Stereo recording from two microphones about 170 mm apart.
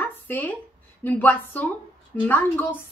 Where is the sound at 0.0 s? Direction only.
10° left (ahead or behind).